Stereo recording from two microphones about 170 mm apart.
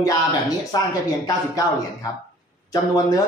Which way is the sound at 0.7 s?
25° left (ahead or behind).